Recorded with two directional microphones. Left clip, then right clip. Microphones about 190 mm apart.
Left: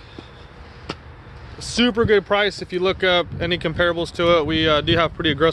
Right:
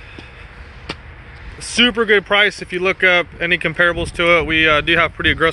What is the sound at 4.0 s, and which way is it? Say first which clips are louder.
Speech: right 3 dB; 15° left (ahead or behind).